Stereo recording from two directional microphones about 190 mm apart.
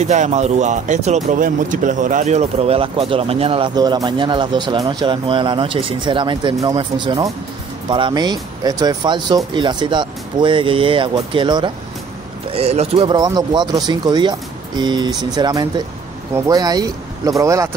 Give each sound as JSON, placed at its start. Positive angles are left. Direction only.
{"t": 0.0, "sound": "speech", "side_deg": -40}
{"t": 13.1, "sound": "speech", "side_deg": -20}